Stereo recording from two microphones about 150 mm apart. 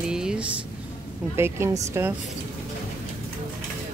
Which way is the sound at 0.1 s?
5° right (ahead or behind).